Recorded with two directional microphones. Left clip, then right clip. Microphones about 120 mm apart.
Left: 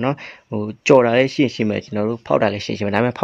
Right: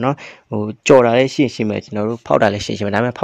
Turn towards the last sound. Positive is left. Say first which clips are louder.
# right 1 dB
turn(degrees=-25)  # may be behind; listen again after turning